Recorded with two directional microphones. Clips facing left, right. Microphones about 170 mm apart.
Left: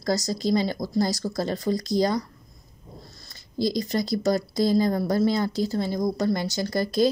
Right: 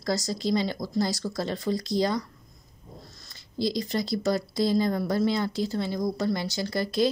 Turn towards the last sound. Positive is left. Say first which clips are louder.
# left 3 dB
turn(degrees=40)  # may be behind; listen again after turning